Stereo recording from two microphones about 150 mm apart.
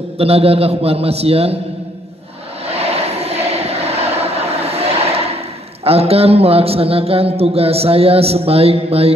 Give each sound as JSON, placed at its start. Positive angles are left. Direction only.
{"t": 0.2, "sound": "speech", "side_deg": -40}
{"t": 2.6, "sound": "vehicle", "side_deg": -45}
{"t": 5.9, "sound": "speech", "side_deg": -40}